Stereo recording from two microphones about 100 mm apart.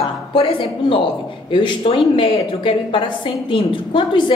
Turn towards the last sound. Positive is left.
turn(degrees=60)  # may be behind; listen again after turning